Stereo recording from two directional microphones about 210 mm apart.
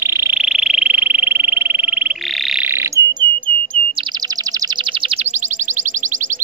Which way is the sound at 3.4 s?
25° right (ahead or behind).